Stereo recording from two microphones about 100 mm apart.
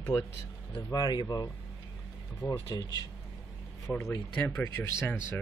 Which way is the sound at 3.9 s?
20° left (ahead or behind).